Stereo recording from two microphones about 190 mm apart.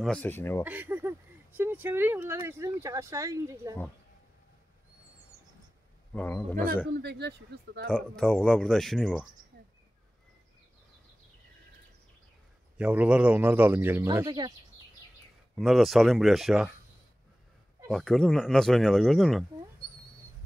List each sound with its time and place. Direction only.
0.0 s speech: 5° left (ahead or behind)
0.7 s a sound: 10° right (ahead or behind)
1.6 s speech: 10° right (ahead or behind)
6.1 s speech: 10° left (ahead or behind)
6.9 s speech: 60° right (ahead or behind)
7.8 s speech: 5° left (ahead or behind)
12.7 s speech: 5° right (ahead or behind)
15.5 s speech: centre (ahead or behind)
17.8 s speech: 5° left (ahead or behind)